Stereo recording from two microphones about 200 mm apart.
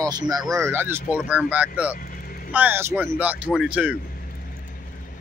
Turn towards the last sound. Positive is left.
turn(degrees=-5)  # may be behind; listen again after turning